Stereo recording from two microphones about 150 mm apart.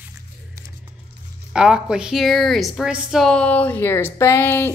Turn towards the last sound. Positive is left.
turn(degrees=15)  # may be behind; listen again after turning